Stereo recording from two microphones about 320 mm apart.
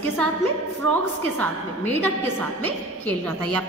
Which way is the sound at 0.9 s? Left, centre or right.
Centre.